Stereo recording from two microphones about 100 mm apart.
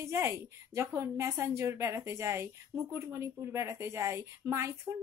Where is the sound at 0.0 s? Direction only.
25° right (ahead or behind).